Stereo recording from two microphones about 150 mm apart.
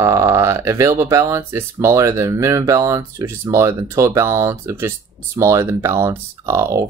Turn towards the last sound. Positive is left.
turn(degrees=-20)  # may be behind; listen again after turning